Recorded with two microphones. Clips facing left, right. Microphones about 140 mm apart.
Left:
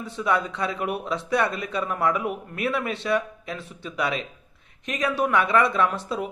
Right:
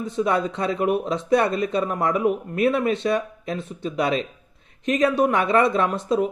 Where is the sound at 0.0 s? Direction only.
25° right (ahead or behind).